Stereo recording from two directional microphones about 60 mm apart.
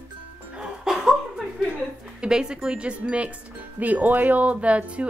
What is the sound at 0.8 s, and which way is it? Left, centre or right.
Chuckle, centre.